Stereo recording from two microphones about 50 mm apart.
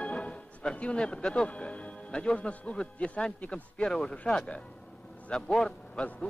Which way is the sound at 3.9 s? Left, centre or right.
Centre.